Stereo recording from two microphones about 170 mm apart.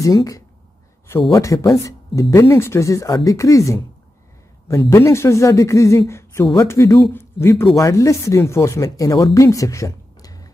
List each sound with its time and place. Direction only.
0.0 s speech: 20° left (ahead or behind)